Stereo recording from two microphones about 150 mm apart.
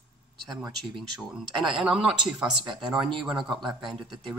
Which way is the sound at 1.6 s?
5° right (ahead or behind).